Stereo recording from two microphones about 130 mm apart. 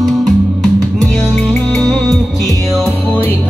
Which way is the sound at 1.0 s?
Centre (ahead or behind).